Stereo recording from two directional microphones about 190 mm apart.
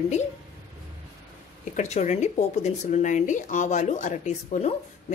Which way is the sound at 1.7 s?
35° left (ahead or behind).